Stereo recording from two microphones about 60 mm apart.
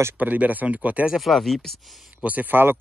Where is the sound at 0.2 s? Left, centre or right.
Right.